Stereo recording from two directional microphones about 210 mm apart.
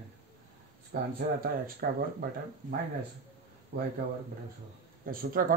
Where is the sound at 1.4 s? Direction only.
45° right (ahead or behind).